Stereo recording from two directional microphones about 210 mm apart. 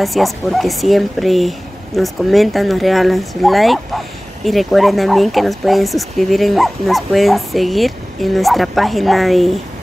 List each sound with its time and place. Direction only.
0.0 s speech: centre (ahead or behind)